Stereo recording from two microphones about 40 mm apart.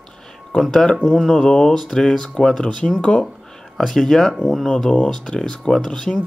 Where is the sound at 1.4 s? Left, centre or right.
Centre.